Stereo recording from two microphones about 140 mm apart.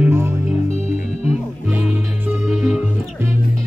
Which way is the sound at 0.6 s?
50° left (ahead or behind).